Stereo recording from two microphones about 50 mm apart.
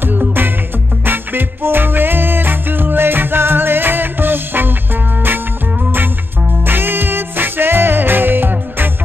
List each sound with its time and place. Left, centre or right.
1.0 s music: right
6.6 s music: right